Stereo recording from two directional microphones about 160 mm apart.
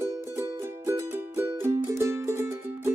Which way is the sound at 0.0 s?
15° right (ahead or behind).